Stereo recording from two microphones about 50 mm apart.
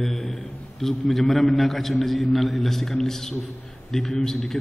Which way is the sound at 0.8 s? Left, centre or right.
Centre.